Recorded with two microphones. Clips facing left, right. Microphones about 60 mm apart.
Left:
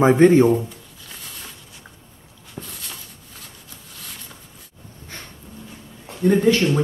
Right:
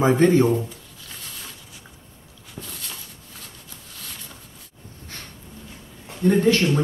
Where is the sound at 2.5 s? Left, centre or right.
Centre.